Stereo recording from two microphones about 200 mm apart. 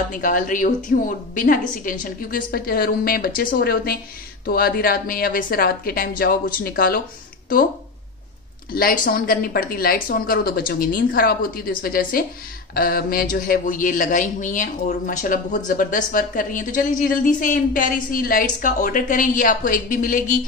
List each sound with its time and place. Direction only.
0.2 s a man's voice: 40° left (ahead or behind)
8.7 s a woman's voice: 45° left (ahead or behind)